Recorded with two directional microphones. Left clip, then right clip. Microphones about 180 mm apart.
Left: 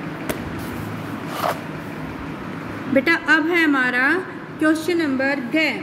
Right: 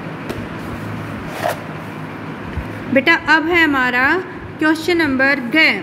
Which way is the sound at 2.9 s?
15° right (ahead or behind).